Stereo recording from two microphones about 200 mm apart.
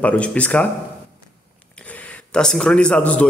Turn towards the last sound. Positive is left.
turn(degrees=5)  # may be behind; listen again after turning